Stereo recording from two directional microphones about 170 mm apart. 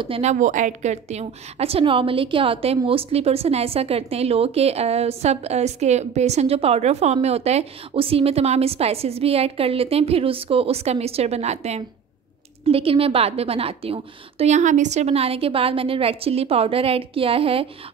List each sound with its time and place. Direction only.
0.0 s a woman's voice: 35° right (ahead or behind)